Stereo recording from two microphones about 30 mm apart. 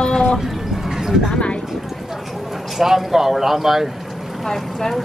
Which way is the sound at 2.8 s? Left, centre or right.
Centre.